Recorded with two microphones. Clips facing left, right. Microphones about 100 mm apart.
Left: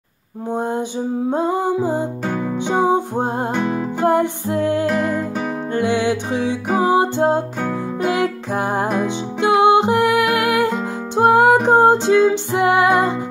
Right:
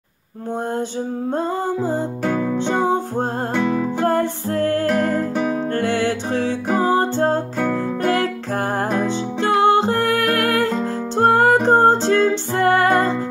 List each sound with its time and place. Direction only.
1.3 s music: 10° left (ahead or behind)